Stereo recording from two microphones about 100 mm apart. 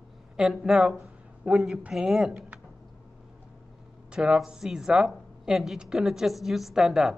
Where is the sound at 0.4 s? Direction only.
5° right (ahead or behind).